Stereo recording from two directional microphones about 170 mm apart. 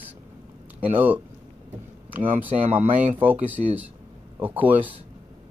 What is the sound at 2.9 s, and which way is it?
Speech, 10° right (ahead or behind).